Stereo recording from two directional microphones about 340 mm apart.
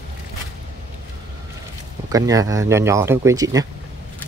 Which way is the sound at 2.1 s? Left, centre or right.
Centre.